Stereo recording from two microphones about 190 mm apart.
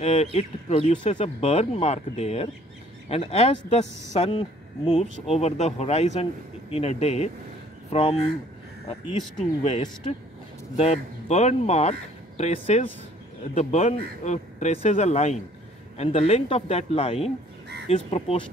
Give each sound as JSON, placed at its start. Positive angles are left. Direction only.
{"t": 0.0, "sound": "speech", "side_deg": 35}
{"t": 9.4, "sound": "speech", "side_deg": 35}